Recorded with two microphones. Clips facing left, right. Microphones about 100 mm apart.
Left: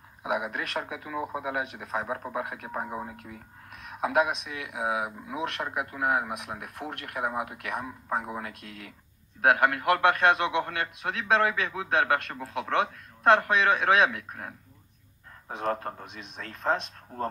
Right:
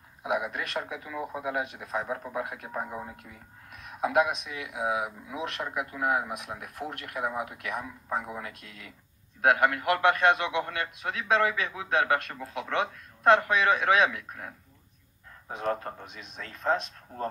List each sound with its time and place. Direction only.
0.3 s a man's voice: 40° left (ahead or behind)
3.3 s a sound: 40° left (ahead or behind)
4.6 s a man's voice: 40° left (ahead or behind)